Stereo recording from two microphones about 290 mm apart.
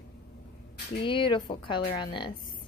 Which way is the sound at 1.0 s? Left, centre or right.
Centre.